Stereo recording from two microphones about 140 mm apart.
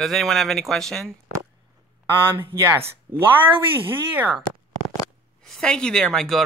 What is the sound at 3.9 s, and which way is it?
Speech, 10° right (ahead or behind).